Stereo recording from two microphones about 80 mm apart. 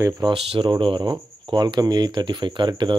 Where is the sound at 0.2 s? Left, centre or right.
Right.